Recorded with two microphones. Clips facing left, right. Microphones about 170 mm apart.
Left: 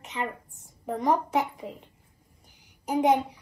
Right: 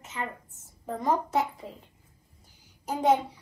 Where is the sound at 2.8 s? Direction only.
15° left (ahead or behind).